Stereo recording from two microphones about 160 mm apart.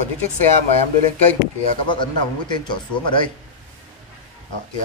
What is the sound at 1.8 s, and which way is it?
A man's voice, 30° left (ahead or behind).